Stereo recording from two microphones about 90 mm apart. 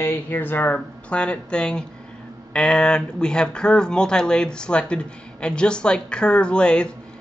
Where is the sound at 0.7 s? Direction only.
10° left (ahead or behind).